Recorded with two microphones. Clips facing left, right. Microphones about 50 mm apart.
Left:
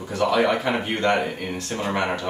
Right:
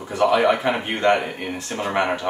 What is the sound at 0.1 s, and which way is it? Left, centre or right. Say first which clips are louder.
Speech: right 3 dB; centre.